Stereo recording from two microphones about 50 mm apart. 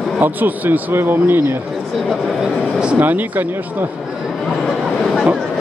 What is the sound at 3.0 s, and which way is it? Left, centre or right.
Speech, right.